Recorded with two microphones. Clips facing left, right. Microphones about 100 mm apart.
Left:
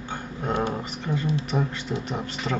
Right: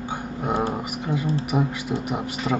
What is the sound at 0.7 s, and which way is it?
Speech, 10° right (ahead or behind).